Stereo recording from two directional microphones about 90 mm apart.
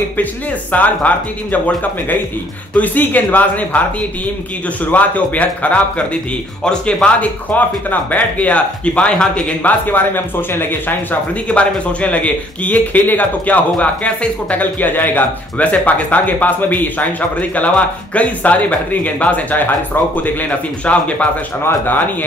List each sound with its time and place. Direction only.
0.2 s speech: 15° left (ahead or behind)
2.7 s speech: 20° left (ahead or behind)
4.9 s speech: 15° left (ahead or behind)